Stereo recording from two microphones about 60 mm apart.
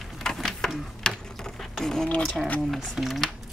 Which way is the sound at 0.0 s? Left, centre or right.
Centre.